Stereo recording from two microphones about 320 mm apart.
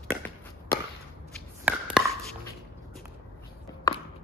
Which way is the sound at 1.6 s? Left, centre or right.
Centre.